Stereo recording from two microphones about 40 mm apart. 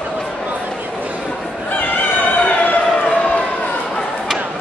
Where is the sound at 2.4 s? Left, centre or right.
Left.